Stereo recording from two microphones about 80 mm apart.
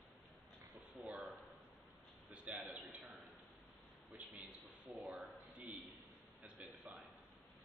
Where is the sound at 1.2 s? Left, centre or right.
Centre.